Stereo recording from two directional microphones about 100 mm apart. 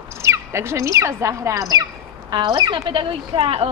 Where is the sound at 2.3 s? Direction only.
50° right (ahead or behind); by 3.7 s 80° right.